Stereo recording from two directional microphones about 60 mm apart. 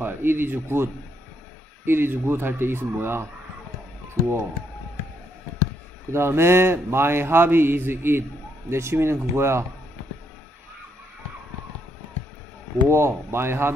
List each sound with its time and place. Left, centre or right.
0.0 s speech: right
1.9 s a man's voice: right
6.1 s a man's voice: right
12.8 s speech: right